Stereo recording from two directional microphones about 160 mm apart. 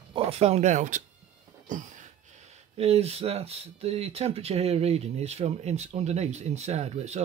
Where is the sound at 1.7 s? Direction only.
55° right (ahead or behind).